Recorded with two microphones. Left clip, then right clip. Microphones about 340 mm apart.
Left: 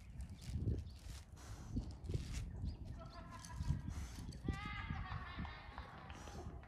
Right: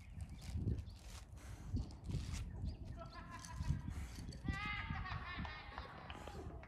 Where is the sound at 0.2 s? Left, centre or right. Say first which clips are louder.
Even; centre.